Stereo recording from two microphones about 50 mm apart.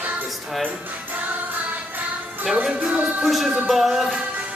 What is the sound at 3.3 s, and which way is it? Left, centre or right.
Music, centre.